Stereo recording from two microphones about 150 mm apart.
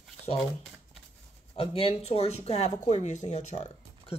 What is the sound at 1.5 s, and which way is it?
Speech, 40° left (ahead or behind).